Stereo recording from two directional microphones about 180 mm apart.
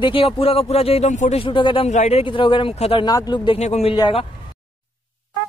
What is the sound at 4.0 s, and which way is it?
Speech, 25° left (ahead or behind).